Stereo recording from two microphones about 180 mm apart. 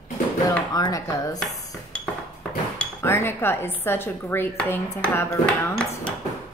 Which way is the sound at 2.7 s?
15° left (ahead or behind).